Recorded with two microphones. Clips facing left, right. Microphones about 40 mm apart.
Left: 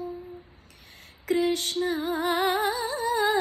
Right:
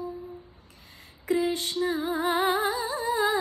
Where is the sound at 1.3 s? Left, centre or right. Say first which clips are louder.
Left 1 dB; left.